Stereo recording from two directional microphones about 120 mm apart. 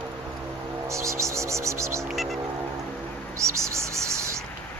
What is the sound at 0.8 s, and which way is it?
Speech, 25° right (ahead or behind).